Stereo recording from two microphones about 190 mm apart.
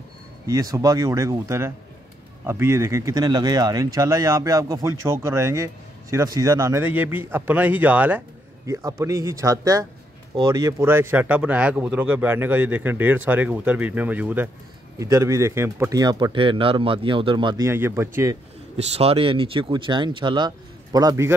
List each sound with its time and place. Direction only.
0.5 s speech: 15° right (ahead or behind)
17.6 s speech: 10° right (ahead or behind)
18.8 s speech: 30° right (ahead or behind); by 21.4 s 15° right (ahead or behind)